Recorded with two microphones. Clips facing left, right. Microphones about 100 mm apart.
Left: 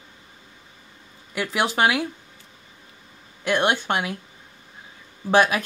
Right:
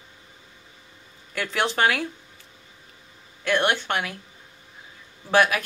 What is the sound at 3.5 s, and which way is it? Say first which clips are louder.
Speech: left 1 dB; 15° left (ahead or behind).